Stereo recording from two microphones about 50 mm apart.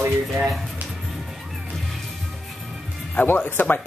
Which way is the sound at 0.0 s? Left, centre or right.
Right.